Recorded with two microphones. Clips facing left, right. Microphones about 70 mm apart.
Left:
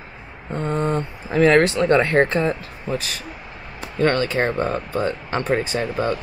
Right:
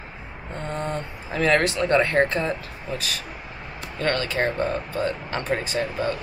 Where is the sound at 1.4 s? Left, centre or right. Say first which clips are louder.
Left 5 dB; left.